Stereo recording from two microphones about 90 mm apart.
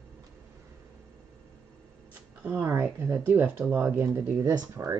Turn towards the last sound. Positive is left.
turn(degrees=-40)  # may be behind; listen again after turning